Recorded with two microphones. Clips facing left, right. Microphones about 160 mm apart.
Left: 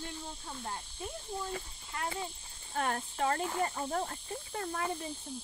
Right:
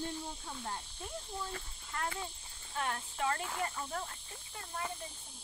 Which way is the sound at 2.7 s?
45° left (ahead or behind).